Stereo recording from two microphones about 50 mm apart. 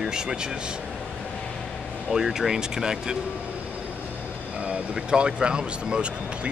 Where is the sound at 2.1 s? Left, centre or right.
Centre.